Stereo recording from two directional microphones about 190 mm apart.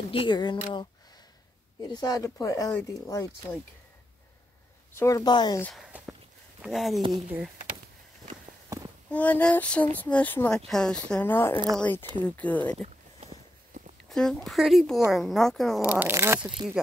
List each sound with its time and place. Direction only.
0.1 s a woman's voice: 25° left (ahead or behind)
1.8 s a woman's voice: 20° left (ahead or behind)
4.9 s a woman's voice: 15° left (ahead or behind)
5.6 s speech: centre (ahead or behind)
9.1 s speech: 5° left (ahead or behind)
13.2 s walk: 35° right (ahead or behind)
14.0 s speech: 5° left (ahead or behind); by 16.5 s 15° right (ahead or behind)
16.5 s speech: centre (ahead or behind)